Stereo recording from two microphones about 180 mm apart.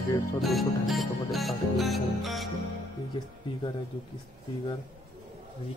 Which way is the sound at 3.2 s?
25° left (ahead or behind).